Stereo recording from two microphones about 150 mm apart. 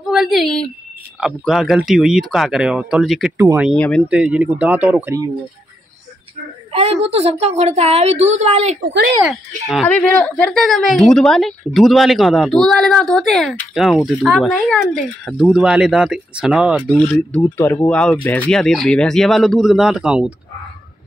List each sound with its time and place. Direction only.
0.1 s speech: centre (ahead or behind)
3.3 s speech: 15° right (ahead or behind)
3.7 s speech: 5° left (ahead or behind)
4.1 s speech: 10° right (ahead or behind)
6.7 s a woman's voice: 40° right (ahead or behind)
9.3 s speech: 5° left (ahead or behind)
17.1 s speech: 10° left (ahead or behind)